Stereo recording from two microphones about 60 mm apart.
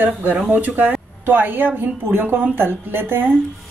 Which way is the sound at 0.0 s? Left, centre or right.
Right.